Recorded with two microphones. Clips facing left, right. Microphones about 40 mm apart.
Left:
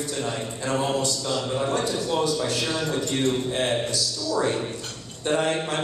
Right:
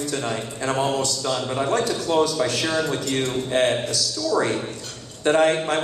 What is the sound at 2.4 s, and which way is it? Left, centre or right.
Speech, right.